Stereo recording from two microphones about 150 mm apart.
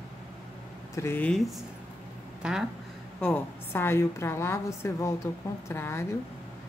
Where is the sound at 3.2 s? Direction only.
15° left (ahead or behind).